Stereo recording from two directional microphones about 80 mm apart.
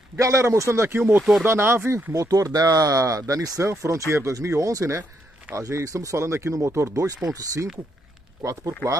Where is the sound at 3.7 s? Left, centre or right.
Right.